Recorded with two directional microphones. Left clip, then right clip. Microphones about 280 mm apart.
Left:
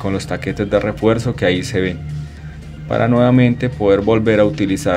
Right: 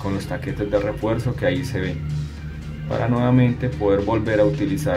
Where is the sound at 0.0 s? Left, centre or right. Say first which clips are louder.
Left 6 dB; centre.